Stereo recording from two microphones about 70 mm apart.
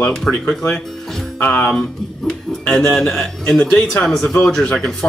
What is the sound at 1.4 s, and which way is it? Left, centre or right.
Speech, left.